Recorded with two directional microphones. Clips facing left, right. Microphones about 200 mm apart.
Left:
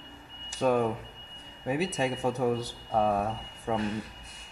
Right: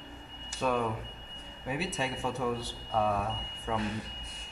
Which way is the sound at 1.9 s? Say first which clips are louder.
Left 5 dB; 40° left (ahead or behind).